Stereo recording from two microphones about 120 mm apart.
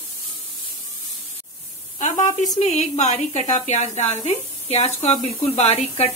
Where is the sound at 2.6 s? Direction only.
70° left (ahead or behind).